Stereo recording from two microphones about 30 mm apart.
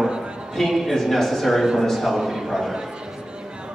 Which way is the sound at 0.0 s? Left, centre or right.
Right.